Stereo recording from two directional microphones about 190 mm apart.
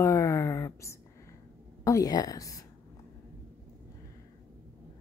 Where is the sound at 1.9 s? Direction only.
20° left (ahead or behind).